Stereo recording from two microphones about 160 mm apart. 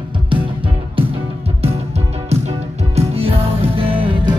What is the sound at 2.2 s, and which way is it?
Music, 40° right (ahead or behind).